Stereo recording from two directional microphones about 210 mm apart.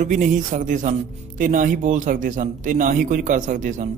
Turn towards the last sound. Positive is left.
turn(degrees=-35)  # may be behind; listen again after turning